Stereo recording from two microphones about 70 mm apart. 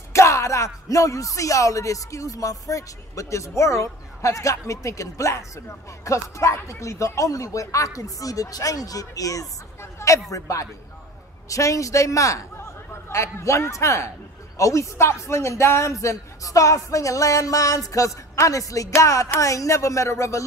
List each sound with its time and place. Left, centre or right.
0.1 s music: left
0.8 s speech: left
9.8 s a sound: left
10.3 s a man's voice: left